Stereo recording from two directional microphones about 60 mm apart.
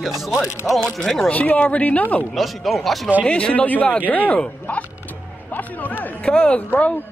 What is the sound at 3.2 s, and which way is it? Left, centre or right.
Speech, centre.